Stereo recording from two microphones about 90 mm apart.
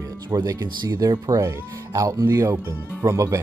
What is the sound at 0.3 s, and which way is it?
Speech, 40° right (ahead or behind).